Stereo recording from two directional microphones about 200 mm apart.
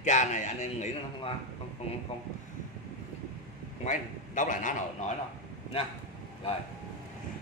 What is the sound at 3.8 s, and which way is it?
A man's voice, 40° left (ahead or behind).